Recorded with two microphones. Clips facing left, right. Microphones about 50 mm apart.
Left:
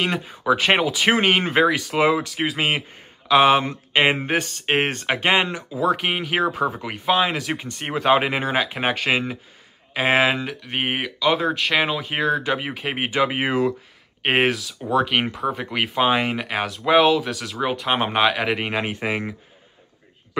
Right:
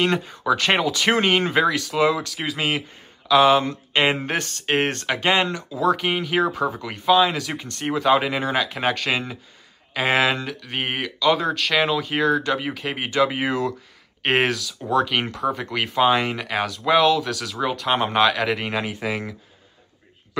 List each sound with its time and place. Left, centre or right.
0.5 s speech: left
14.2 s speech: centre
17.0 s speech: left
18.5 s speech: left